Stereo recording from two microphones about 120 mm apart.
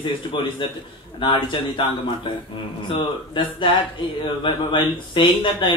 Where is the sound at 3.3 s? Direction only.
45° left (ahead or behind).